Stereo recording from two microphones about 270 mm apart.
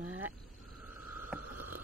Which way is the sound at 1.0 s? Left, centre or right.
Right.